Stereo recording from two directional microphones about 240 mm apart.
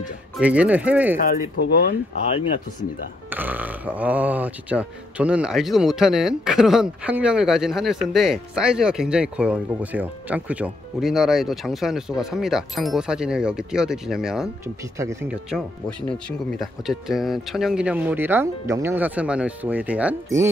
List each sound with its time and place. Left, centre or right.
0.4 s speech: centre
1.1 s speech: left
3.3 s speech: centre
16.1 s speech: centre